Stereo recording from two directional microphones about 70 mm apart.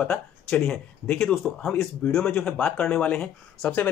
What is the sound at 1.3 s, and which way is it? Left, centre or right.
Speech, centre.